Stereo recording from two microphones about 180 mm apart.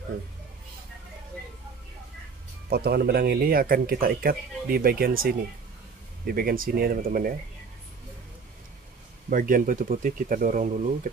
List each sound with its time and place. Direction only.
2.7 s speech: 60° right (ahead or behind)
9.3 s speech: 50° right (ahead or behind)